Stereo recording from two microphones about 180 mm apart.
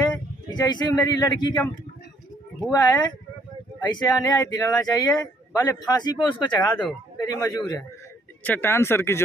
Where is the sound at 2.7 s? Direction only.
20° left (ahead or behind).